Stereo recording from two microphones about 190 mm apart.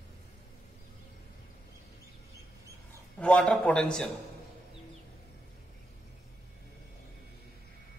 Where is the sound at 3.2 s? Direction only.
5° left (ahead or behind).